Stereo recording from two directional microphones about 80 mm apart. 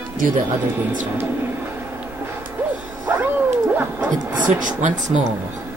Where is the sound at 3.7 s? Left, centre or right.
Right.